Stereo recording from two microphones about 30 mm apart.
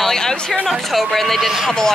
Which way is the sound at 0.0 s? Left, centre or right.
Centre.